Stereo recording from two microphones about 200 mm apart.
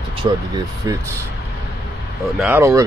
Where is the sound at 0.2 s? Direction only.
20° right (ahead or behind).